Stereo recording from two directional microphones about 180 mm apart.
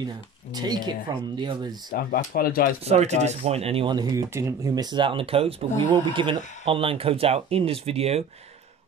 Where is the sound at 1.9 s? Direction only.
55° left (ahead or behind).